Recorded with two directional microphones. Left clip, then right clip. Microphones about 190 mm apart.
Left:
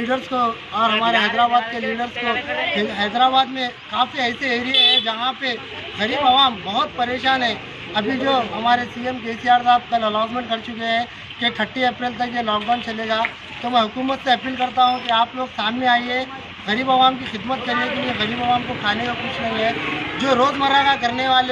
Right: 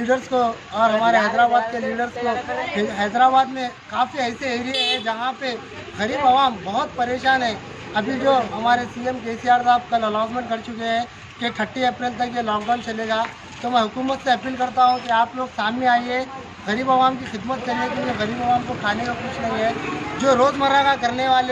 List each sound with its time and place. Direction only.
0.3 s a man's voice: 35° right (ahead or behind); by 2.3 s 20° right (ahead or behind)
2.8 s a man's voice: 10° right (ahead or behind)
18.9 s a man's voice: 10° right (ahead or behind)
20.2 s a man's voice: 10° right (ahead or behind)